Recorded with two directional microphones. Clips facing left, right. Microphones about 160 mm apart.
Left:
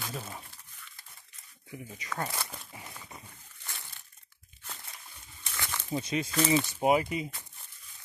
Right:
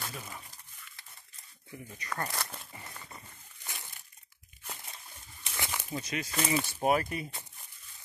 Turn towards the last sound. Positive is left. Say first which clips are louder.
# left 2 dB
turn(degrees=15)  # may be behind; listen again after turning